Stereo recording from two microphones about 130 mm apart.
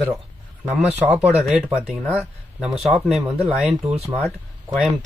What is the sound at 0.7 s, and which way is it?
Speech, 10° right (ahead or behind).